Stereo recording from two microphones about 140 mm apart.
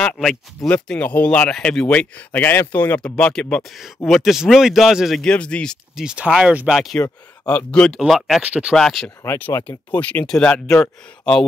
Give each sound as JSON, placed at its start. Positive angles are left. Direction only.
{"t": 0.0, "sound": "speech", "side_deg": 5}
{"t": 6.0, "sound": "speech", "side_deg": -5}
{"t": 8.0, "sound": "speech", "side_deg": -5}
{"t": 8.7, "sound": "speech", "side_deg": 0}
{"t": 9.2, "sound": "speech", "side_deg": 20}